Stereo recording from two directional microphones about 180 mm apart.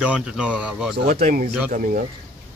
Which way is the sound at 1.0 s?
40° right (ahead or behind).